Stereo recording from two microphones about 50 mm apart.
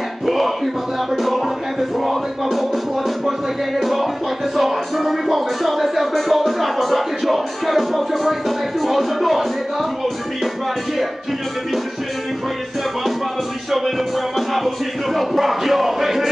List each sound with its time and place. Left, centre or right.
1.1 s music: centre
13.7 s music: centre